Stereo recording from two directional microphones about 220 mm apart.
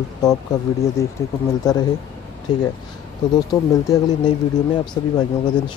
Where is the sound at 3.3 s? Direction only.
15° left (ahead or behind).